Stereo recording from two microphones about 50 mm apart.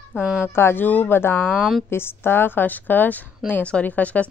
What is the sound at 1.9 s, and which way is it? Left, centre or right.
A woman's voice, left.